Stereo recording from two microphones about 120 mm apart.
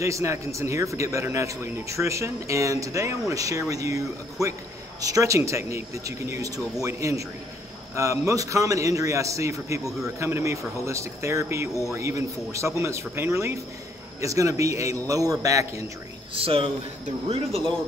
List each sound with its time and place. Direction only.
0.0 s a man's voice: 25° right (ahead or behind)
16.3 s a man's voice: 55° right (ahead or behind)
17.5 s speech: 5° left (ahead or behind)